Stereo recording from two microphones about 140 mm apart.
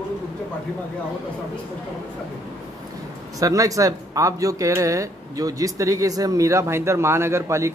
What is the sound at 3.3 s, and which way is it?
Speech, 25° right (ahead or behind).